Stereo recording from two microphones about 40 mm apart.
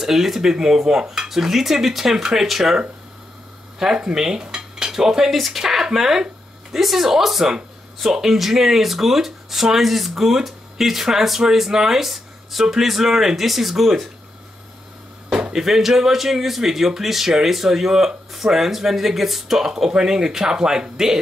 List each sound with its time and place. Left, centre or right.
0.0 s speech: centre
3.8 s speech: centre
4.1 s cutlery: centre
5.3 s speech: centre
15.5 s speech: centre